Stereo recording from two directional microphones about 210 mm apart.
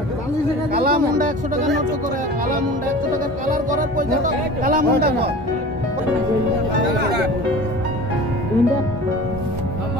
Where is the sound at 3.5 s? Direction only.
40° right (ahead or behind).